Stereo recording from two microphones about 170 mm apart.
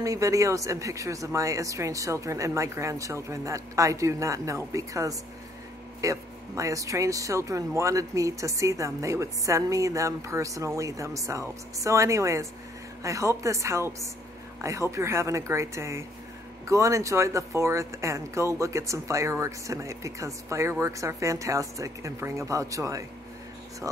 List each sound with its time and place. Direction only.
0.0 s speech: 20° right (ahead or behind)